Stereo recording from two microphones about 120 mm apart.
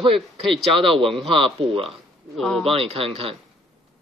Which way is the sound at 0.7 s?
50° right (ahead or behind).